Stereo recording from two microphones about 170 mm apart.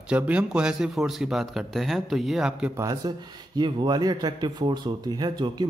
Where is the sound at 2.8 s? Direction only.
20° right (ahead or behind).